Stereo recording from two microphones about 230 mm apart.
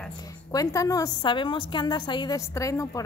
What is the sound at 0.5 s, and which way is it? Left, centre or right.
A woman's voice, centre.